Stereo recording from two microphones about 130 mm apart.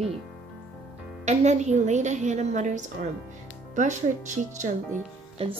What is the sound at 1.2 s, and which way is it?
A woman's voice, 65° right (ahead or behind).